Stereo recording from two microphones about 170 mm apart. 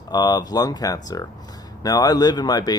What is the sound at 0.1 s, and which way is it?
Speech, 25° left (ahead or behind).